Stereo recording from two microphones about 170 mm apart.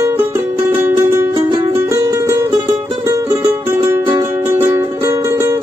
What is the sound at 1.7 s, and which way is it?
Music, 15° right (ahead or behind).